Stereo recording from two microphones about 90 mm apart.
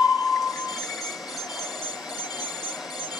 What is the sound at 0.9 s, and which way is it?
Vehicle, centre (ahead or behind).